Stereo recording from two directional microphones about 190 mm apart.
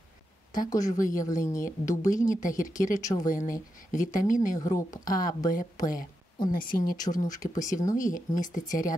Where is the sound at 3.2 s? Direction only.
45° left (ahead or behind).